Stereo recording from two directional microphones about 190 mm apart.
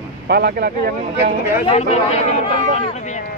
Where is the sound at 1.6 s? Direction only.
35° left (ahead or behind).